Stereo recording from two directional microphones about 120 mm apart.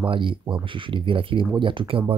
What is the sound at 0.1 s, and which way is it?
Speech, 45° right (ahead or behind).